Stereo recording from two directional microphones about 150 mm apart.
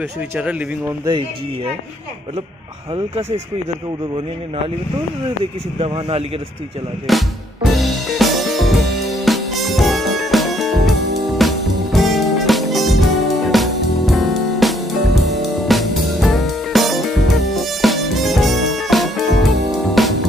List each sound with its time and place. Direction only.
0.4 s speech: 10° right (ahead or behind)
1.0 s speech: 30° right (ahead or behind)
2.9 s speech: 45° right (ahead or behind)
5.4 s speech: 40° right (ahead or behind)
7.1 s music: centre (ahead or behind)